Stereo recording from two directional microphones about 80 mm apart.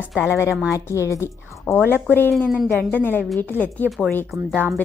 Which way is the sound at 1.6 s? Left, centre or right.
Left.